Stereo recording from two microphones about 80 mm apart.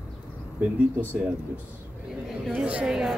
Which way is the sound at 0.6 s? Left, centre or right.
Right.